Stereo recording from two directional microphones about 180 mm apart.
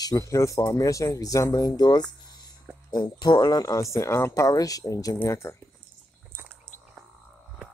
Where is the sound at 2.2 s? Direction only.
25° left (ahead or behind).